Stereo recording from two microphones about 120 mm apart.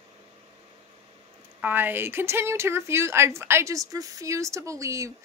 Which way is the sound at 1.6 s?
15° right (ahead or behind).